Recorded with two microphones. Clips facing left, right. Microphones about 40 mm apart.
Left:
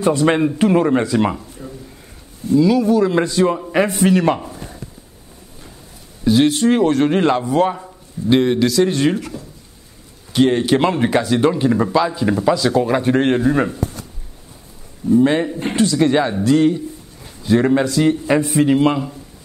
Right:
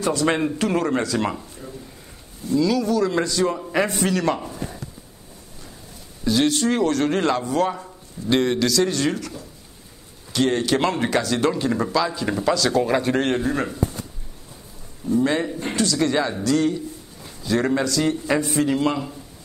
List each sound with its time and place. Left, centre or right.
0.0 s a man's voice: left
6.2 s a man's voice: centre
10.3 s speech: centre
15.0 s a man's voice: left